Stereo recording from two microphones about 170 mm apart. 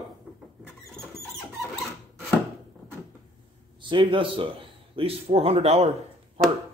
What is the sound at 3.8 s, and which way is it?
A man's voice, 30° right (ahead or behind).